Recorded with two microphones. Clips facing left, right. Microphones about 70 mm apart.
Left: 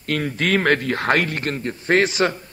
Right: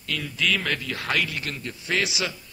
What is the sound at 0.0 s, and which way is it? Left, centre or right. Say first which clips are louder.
A man's voice: left 6 dB; left.